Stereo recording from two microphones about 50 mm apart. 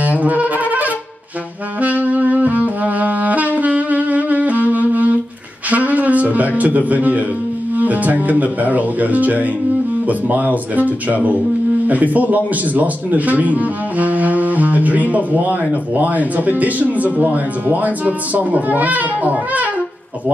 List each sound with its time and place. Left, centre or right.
0.0 s music: right
1.8 s saxophone: right
5.7 s a sound: right
6.9 s speech: right